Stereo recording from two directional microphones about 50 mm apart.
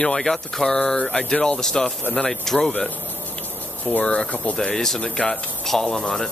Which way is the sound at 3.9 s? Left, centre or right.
Left.